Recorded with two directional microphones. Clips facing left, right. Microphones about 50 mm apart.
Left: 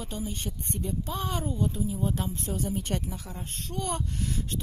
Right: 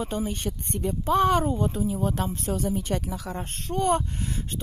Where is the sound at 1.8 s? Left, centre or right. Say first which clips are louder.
Right 4 dB; right.